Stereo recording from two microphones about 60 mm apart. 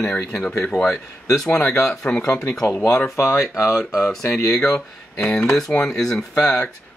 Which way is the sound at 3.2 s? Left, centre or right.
Left.